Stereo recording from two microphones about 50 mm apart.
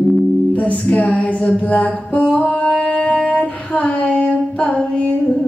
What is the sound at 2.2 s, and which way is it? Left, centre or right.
Female singing, centre.